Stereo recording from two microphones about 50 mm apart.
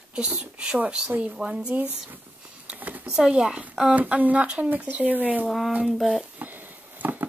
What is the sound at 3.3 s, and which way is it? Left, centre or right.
Speech, centre.